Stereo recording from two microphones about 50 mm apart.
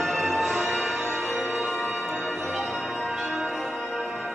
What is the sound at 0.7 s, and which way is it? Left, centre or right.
Music, centre.